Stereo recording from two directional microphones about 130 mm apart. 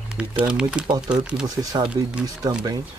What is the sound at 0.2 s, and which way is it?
Speech, 10° right (ahead or behind).